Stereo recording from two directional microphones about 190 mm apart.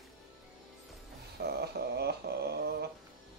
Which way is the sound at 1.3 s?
55° right (ahead or behind).